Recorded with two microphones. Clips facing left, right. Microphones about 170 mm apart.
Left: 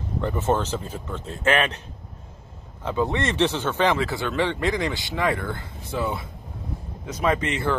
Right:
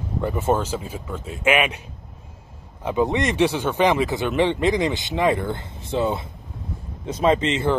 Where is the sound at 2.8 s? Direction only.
15° right (ahead or behind).